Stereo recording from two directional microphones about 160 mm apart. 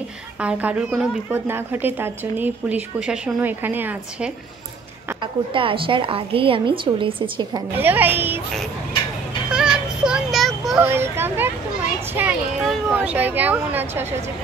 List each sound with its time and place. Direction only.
0.4 s a woman's voice: 10° right (ahead or behind)
5.2 s a woman's voice: 35° right (ahead or behind)
7.7 s a woman's voice: 10° right (ahead or behind)
9.5 s a sound: 5° right (ahead or behind)
10.8 s a woman's voice: 15° right (ahead or behind)
12.1 s a sound: 10° right (ahead or behind)
12.9 s a woman's voice: 10° right (ahead or behind)